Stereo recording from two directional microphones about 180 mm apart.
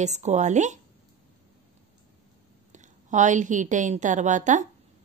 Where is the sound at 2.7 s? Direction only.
45° right (ahead or behind).